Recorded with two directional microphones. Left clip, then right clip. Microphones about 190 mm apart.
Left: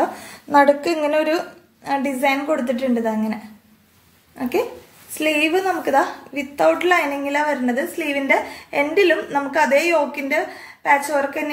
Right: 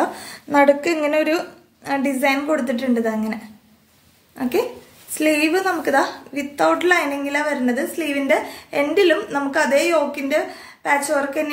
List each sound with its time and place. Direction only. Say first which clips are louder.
0.0 s a woman's voice: left 1 dB; 20° right (ahead or behind)
4.4 s a woman's voice: right 1 dB; 20° right (ahead or behind)